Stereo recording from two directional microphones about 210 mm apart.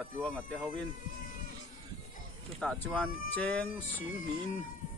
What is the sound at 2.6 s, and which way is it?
Speech, 5° left (ahead or behind).